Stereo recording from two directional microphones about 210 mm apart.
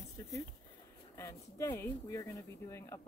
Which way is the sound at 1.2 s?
15° left (ahead or behind).